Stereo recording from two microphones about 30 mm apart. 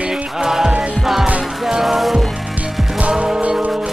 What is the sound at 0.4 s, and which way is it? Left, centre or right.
Music, centre.